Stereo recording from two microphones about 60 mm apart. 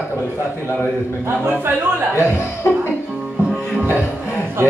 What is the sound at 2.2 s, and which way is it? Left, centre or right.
Speech, left.